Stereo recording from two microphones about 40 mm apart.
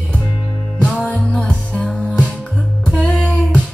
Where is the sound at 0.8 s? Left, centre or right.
Left.